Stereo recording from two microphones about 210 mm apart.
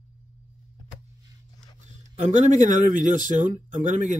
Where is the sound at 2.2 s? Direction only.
35° right (ahead or behind).